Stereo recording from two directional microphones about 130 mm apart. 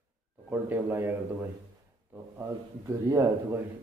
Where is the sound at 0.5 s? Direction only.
15° right (ahead or behind).